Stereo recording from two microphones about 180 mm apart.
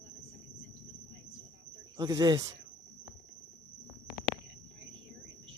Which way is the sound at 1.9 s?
20° right (ahead or behind).